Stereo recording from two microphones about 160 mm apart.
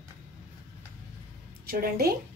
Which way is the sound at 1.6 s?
70° right (ahead or behind).